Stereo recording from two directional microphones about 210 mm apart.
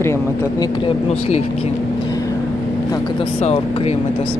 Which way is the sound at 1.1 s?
30° left (ahead or behind).